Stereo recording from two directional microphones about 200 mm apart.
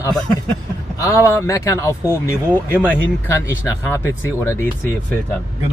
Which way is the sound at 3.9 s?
15° left (ahead or behind).